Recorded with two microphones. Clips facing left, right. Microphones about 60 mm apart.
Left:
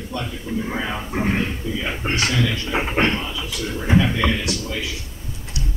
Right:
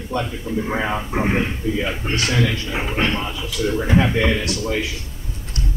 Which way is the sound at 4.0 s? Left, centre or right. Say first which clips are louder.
Right 1 dB; right.